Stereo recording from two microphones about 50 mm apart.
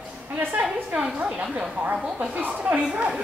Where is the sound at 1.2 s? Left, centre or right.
Centre.